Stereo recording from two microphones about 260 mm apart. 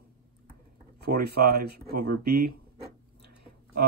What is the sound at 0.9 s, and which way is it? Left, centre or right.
Speech, right.